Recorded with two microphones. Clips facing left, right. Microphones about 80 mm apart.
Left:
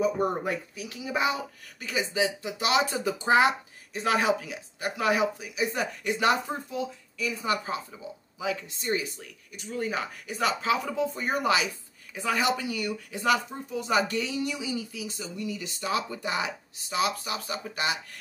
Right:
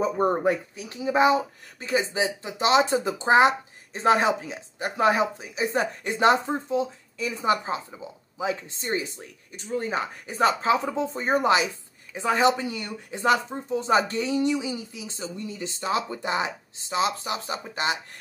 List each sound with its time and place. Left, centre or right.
0.0 s speech: right